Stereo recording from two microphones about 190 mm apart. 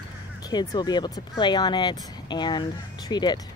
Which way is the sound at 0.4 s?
20° left (ahead or behind).